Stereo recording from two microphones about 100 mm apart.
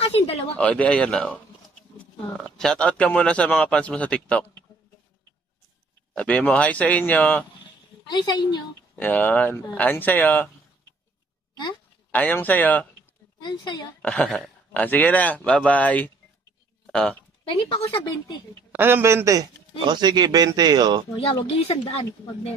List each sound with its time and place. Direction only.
0.0 s a sound: 90° left
0.6 s a man's voice: 10° left (ahead or behind)
6.1 s a man's voice: 15° left (ahead or behind)
8.1 s speech: 45° left (ahead or behind)
8.9 s a man's voice: 15° left (ahead or behind)
12.1 s a man's voice: 15° left (ahead or behind)
13.4 s speech: 45° left (ahead or behind)
14.0 s a man's voice: 10° left (ahead or behind)
17.8 s speech: 50° left (ahead or behind)
18.7 s a man's voice: 20° right (ahead or behind)
19.8 s speech: 50° right (ahead or behind)
21.2 s speech: 65° left (ahead or behind); by 22.5 s 90° left